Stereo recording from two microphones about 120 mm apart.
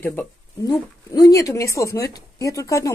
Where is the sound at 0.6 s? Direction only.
35° left (ahead or behind).